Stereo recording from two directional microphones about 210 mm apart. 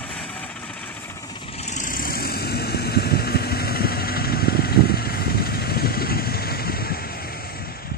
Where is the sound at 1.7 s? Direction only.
40° left (ahead or behind).